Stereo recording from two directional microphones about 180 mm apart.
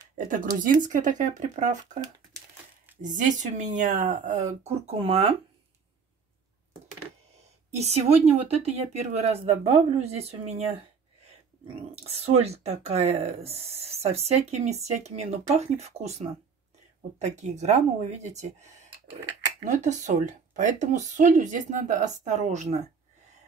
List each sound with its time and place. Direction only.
0.6 s speech: 45° right (ahead or behind)
3.0 s speech: 45° right (ahead or behind)
7.8 s speech: 35° right (ahead or behind)
11.6 s speech: 35° right (ahead or behind)
19.6 s speech: 40° right (ahead or behind)